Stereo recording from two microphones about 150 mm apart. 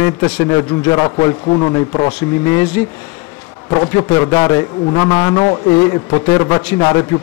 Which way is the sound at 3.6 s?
25° left (ahead or behind).